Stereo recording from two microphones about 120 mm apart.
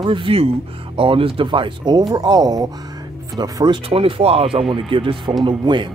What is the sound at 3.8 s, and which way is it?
Speech, 50° right (ahead or behind).